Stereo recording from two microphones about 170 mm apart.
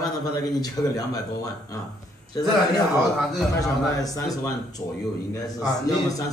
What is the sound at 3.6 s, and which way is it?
Speech, 20° left (ahead or behind).